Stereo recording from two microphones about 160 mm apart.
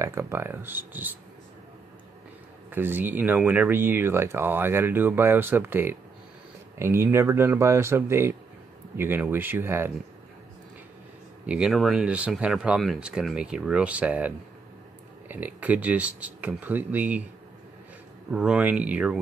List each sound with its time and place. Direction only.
0.0 s speech: 15° right (ahead or behind)
2.7 s speech: 10° right (ahead or behind)
11.4 s speech: 5° right (ahead or behind)
18.3 s speech: 5° right (ahead or behind)